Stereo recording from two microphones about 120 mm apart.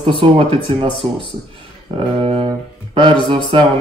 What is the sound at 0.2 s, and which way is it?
Speech, 50° right (ahead or behind).